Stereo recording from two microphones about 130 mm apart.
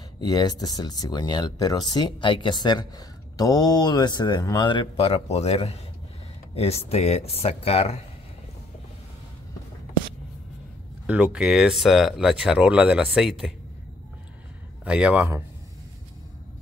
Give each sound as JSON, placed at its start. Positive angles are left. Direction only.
{"t": 0.2, "sound": "speech", "side_deg": 30}
{"t": 11.1, "sound": "speech", "side_deg": -5}
{"t": 14.9, "sound": "speech", "side_deg": -10}